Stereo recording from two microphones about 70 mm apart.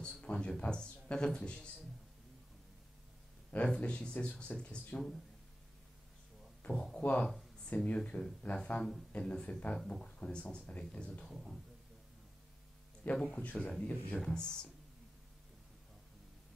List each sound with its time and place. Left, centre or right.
0.0 s a man's voice: centre
3.5 s speech: centre
6.6 s speech: centre
13.0 s speech: left